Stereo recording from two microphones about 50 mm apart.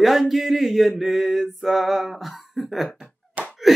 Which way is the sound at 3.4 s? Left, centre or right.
Right.